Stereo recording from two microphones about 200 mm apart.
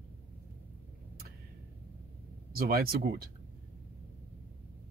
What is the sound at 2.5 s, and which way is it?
Speech, 50° right (ahead or behind).